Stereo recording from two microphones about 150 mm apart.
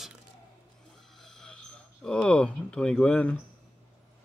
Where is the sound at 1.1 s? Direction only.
Centre (ahead or behind).